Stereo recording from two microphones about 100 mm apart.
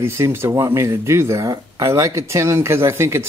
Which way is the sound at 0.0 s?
25° right (ahead or behind).